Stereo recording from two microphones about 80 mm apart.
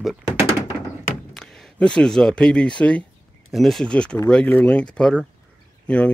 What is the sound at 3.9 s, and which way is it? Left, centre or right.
Speech, centre.